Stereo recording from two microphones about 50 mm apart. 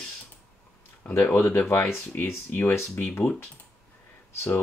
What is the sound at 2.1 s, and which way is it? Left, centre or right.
Speech, left.